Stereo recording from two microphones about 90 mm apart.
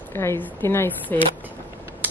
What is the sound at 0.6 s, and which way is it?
Speech, 30° left (ahead or behind).